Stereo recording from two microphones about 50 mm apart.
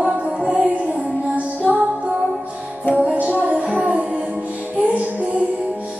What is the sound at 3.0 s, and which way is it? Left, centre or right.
Music, right.